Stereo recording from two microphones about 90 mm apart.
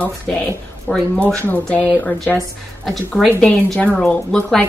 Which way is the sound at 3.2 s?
10° left (ahead or behind).